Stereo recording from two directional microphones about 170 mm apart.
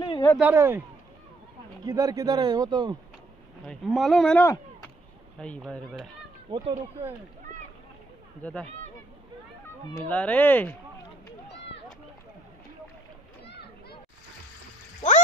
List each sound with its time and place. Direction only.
0.0 s a sound: 30° left (ahead or behind)
0.4 s speech: 10° right (ahead or behind)
1.9 s speech: 20° right (ahead or behind)
3.6 s speech: centre (ahead or behind)
8.4 s speech: 10° left (ahead or behind)
10.0 s speech: 10° left (ahead or behind)
11.5 s run: 90° left
13.5 s children playing: 70° left (ahead or behind)
15.0 s a sound: 45° left (ahead or behind)